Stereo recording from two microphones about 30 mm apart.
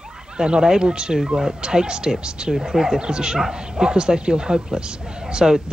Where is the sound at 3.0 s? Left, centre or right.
Right.